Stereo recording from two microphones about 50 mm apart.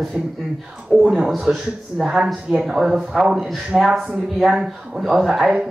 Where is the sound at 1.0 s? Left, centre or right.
Centre.